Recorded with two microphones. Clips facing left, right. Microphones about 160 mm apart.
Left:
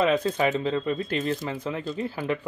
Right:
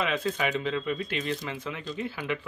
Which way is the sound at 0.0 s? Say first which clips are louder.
Left 6 dB; 40° left (ahead or behind).